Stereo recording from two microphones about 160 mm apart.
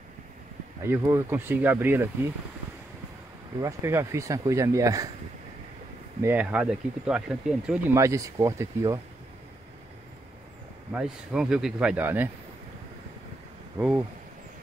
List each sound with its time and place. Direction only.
0.8 s speech: 15° right (ahead or behind)
3.6 s speech: 20° right (ahead or behind)
6.2 s speech: 10° right (ahead or behind)
7.9 s speech: 20° right (ahead or behind)
10.9 s speech: 5° right (ahead or behind)
13.7 s speech: 10° right (ahead or behind)